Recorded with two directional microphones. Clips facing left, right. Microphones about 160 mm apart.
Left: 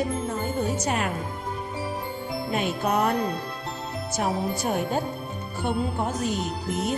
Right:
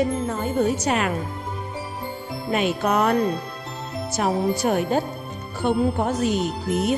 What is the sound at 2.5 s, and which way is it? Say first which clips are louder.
Speech: right 4 dB; 90° right.